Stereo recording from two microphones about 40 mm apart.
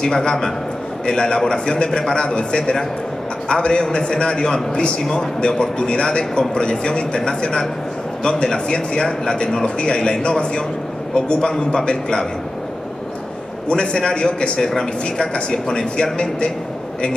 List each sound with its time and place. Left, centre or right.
0.0 s a man's voice: centre
2.1 s a man's voice: left
13.7 s speech: left
14.6 s a man's voice: centre